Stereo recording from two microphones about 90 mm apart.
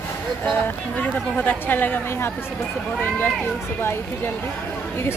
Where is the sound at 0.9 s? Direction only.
20° left (ahead or behind).